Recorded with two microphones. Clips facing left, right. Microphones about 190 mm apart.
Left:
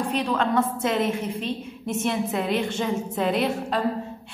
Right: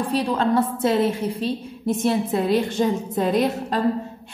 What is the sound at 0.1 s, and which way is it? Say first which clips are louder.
A woman's voice: right 4 dB; 35° right (ahead or behind).